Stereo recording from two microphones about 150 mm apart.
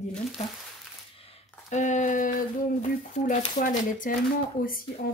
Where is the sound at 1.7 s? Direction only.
55° left (ahead or behind).